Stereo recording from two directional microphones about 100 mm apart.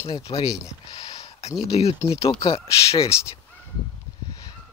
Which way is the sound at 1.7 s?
90° left.